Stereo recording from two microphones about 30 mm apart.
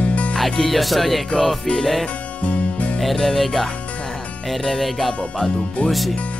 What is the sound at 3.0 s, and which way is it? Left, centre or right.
Speech, centre.